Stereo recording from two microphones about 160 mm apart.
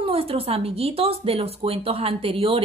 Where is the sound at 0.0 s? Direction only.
35° right (ahead or behind).